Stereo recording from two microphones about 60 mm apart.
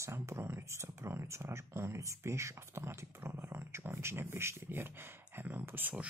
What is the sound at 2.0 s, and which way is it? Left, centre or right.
Speech, right.